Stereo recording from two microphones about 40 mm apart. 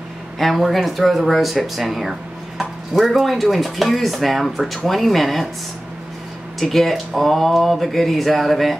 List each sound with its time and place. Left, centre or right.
0.4 s speech: centre
6.6 s speech: centre